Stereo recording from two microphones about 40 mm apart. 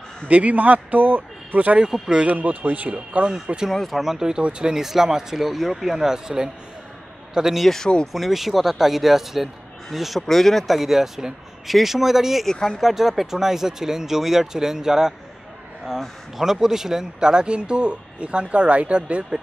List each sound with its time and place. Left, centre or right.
0.3 s speech: right
1.9 s speech: right
2.2 s speech: right
2.9 s speech: right
3.7 s speech: centre
4.0 s speech: centre
4.4 s speech: right
4.7 s speech: centre
7.6 s speech: centre
8.1 s speech: centre
12.4 s speech: centre
12.8 s speech: centre
16.4 s speech: centre; by 19.2 s right